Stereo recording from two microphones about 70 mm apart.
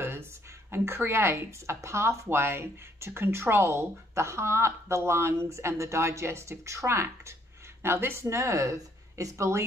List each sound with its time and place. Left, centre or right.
0.0 s speech: right